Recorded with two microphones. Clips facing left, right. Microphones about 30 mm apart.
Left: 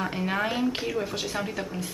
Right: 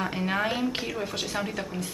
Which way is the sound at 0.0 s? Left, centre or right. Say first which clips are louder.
Even; centre.